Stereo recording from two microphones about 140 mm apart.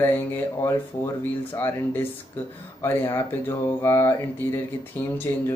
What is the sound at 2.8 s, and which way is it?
Speech, 15° left (ahead or behind).